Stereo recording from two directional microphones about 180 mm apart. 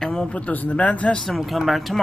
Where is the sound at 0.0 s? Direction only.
5° left (ahead or behind).